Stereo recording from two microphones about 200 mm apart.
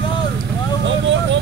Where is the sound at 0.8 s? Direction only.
65° right (ahead or behind).